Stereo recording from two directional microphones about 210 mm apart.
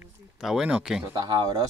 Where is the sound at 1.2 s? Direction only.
20° right (ahead or behind).